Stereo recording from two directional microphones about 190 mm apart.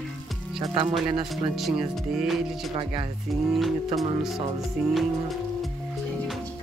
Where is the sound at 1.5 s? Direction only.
Centre (ahead or behind).